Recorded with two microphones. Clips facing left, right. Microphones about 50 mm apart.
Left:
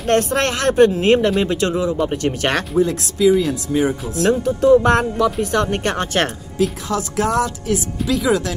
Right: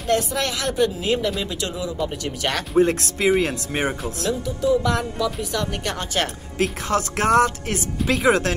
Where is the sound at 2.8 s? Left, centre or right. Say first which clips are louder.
Left 3 dB; right.